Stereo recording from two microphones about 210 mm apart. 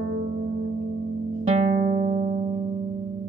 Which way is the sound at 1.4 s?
35° right (ahead or behind).